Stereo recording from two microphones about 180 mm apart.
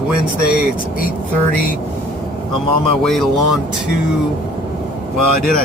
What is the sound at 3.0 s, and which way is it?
Speech, centre (ahead or behind).